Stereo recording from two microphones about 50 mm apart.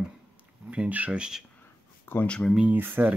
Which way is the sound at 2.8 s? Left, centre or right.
Right.